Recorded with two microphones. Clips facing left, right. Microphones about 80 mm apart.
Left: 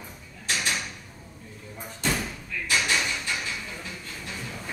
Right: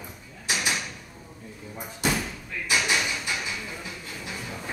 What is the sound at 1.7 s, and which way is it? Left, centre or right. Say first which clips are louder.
Slam: right 2 dB; centre.